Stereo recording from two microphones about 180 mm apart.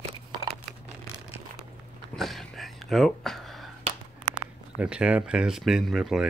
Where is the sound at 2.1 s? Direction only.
Centre (ahead or behind).